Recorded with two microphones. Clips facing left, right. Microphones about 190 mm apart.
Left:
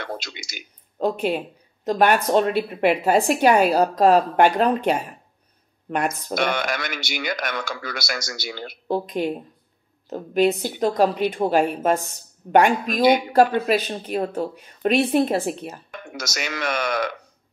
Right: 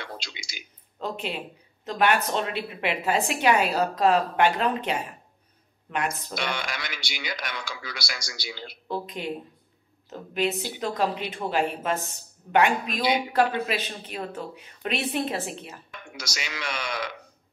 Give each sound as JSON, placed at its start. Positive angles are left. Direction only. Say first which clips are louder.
{"t": 0.0, "sound": "a woman's voice", "louder": "left 7 dB", "side_deg": 50}